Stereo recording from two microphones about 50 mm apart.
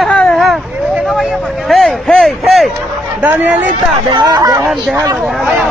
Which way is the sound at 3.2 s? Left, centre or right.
Right.